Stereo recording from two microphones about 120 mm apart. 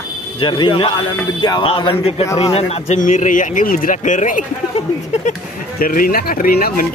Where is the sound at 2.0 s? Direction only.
60° left (ahead or behind); by 4.4 s 90° left.